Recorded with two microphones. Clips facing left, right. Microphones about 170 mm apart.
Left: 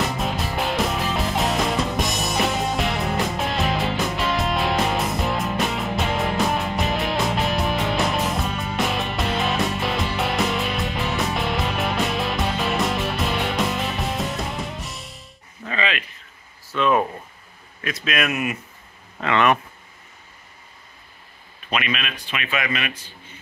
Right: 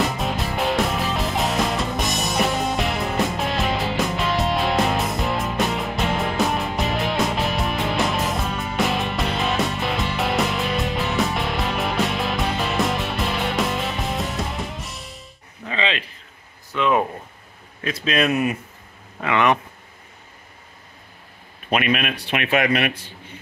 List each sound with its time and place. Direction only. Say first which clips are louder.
0.2 s music: right 1 dB; centre (ahead or behind)
15.6 s a sound: right 1 dB; 20° right (ahead or behind)
17.8 s speech: right 4 dB; 30° right (ahead or behind)
19.2 s speech: even; 15° right (ahead or behind)
21.6 s speech: right 5 dB; 50° right (ahead or behind)